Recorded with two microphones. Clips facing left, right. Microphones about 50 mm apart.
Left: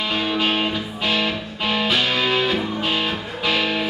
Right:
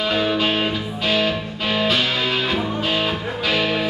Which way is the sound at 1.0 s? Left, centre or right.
Centre.